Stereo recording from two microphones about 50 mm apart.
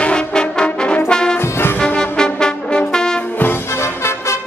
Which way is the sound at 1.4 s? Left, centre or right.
Left.